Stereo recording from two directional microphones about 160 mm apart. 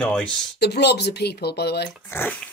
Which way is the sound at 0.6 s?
90° left.